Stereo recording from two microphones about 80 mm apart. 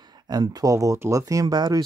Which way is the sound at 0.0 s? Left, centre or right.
Right.